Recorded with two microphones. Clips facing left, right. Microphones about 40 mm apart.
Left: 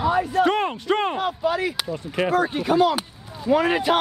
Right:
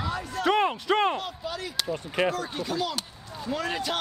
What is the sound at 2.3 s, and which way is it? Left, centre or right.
A man's voice, left.